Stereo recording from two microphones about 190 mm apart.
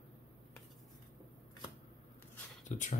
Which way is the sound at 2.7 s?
40° left (ahead or behind).